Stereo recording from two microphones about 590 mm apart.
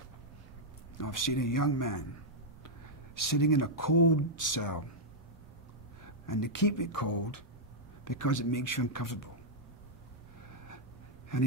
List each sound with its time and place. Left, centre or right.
0.9 s speech: left
3.2 s speech: left
6.2 s speech: left
11.3 s speech: left